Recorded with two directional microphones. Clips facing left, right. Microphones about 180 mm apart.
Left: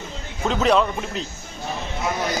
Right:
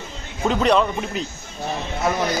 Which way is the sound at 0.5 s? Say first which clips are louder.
Right 1 dB; centre (ahead or behind).